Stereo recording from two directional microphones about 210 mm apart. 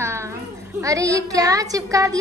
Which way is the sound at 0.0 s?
10° right (ahead or behind).